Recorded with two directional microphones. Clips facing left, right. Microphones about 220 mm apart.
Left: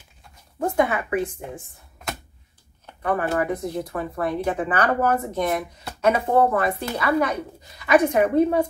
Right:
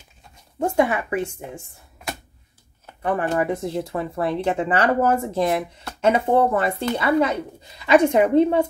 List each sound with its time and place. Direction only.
0.6 s speech: 30° right (ahead or behind)
3.0 s speech: 30° right (ahead or behind)